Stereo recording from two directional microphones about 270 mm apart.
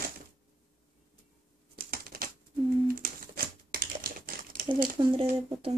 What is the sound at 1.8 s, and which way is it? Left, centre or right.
Typewriter, right.